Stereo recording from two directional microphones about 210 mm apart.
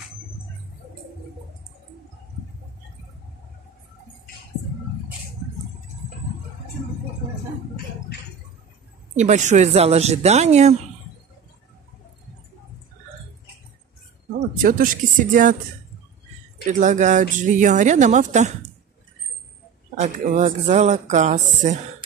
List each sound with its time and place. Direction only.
9.1 s speech: 35° right (ahead or behind)
14.6 s speech: 40° right (ahead or behind)
16.6 s speech: 35° right (ahead or behind)
20.0 s speech: 35° right (ahead or behind)